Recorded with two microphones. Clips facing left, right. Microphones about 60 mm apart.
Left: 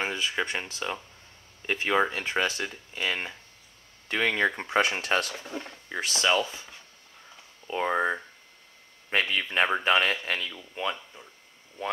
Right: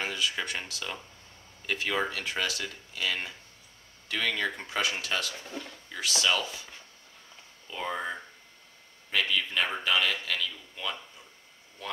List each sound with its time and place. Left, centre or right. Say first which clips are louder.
0.0 s speech: left 3 dB; left
5.3 s speech: left 4 dB; centre
5.6 s speech: left 4 dB; left
7.6 s speech: left 7 dB; left
9.2 s speech: left 3 dB; left